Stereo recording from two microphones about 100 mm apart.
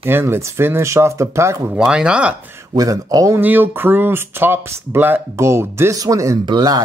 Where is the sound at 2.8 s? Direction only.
35° right (ahead or behind).